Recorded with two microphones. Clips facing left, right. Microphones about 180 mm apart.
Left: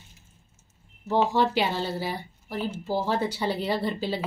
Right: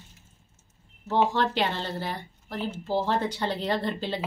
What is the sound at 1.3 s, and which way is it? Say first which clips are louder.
Speech: left 2 dB; 10° left (ahead or behind).